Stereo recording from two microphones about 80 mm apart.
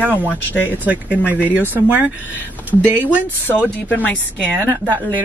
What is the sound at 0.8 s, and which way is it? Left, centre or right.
A woman's voice, centre.